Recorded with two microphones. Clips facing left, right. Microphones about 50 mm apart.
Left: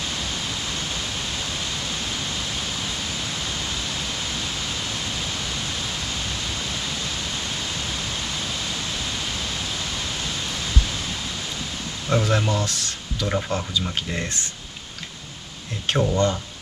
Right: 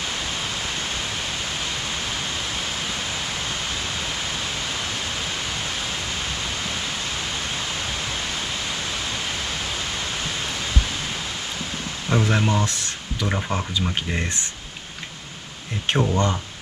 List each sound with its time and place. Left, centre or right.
12.1 s speech: right
15.9 s speech: right